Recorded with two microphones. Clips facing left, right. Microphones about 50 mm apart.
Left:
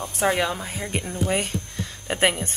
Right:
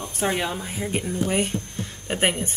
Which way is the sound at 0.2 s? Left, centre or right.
Left.